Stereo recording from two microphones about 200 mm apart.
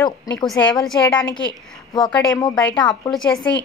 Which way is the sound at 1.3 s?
20° left (ahead or behind).